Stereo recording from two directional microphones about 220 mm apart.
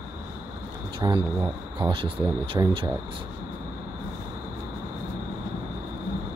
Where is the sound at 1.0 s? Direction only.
20° right (ahead or behind).